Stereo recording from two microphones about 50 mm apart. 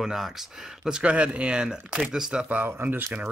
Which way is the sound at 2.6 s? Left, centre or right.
Right.